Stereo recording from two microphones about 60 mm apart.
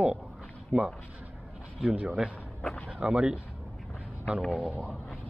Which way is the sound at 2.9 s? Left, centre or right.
Centre.